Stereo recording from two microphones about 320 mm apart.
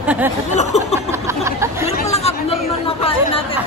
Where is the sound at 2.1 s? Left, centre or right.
Centre.